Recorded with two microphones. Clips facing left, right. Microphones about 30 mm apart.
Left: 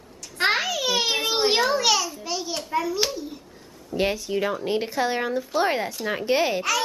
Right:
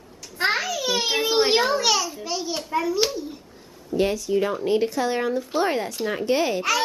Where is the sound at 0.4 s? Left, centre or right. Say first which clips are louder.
Left 1 dB; centre.